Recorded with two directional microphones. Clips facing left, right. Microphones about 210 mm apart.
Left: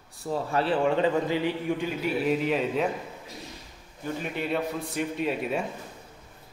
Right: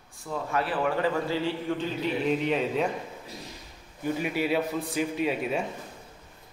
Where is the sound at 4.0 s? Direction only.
10° right (ahead or behind).